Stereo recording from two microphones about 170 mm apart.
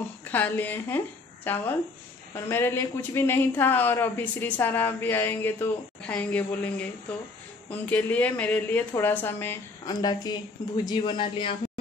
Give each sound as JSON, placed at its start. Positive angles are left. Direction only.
{"t": 0.2, "sound": "a woman's voice", "side_deg": 10}
{"t": 9.9, "sound": "speech", "side_deg": 25}